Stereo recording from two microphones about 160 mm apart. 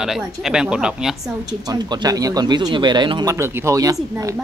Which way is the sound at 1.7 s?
25° right (ahead or behind).